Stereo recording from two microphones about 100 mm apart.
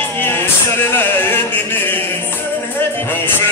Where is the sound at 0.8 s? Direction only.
25° left (ahead or behind).